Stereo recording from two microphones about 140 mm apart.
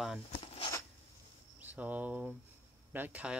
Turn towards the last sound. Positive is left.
turn(degrees=-10)  # may be behind; listen again after turning